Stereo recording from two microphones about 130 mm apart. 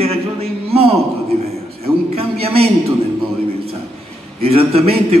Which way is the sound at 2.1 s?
50° right (ahead or behind).